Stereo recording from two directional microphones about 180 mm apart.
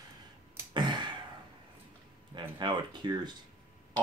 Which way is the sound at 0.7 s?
25° right (ahead or behind).